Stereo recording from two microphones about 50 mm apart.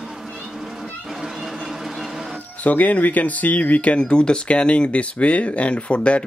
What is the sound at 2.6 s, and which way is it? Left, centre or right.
Speech, left.